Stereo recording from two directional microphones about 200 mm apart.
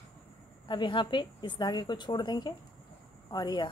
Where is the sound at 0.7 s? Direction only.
25° left (ahead or behind).